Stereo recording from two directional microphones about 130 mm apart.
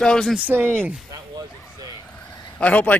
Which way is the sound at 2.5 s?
10° left (ahead or behind).